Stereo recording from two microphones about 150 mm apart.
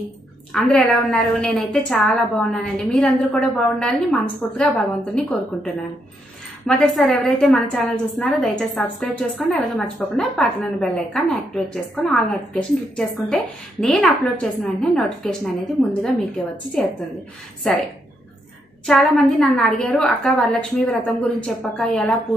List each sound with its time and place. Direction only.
0.5 s a woman's voice: 5° left (ahead or behind)
16.8 s a woman's voice: 5° left (ahead or behind)
18.9 s a woman's voice: centre (ahead or behind)